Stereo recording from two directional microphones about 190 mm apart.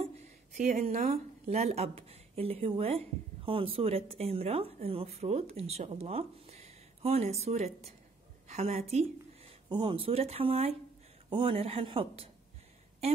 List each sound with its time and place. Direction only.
0.6 s speech: 45° right (ahead or behind); by 12.3 s 25° right (ahead or behind)